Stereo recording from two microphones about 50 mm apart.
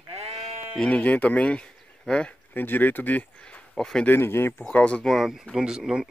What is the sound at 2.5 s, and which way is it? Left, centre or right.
Speech, left.